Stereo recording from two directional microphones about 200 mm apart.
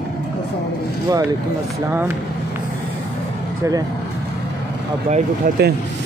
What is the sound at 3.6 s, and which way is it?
Speech, 15° right (ahead or behind).